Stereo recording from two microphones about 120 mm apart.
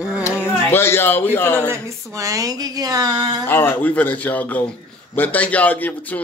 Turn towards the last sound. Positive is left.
turn(degrees=15)  # may be behind; listen again after turning